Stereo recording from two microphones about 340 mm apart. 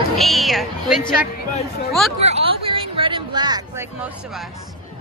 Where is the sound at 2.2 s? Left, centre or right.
Centre.